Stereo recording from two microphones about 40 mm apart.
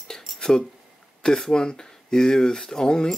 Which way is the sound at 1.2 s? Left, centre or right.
Centre.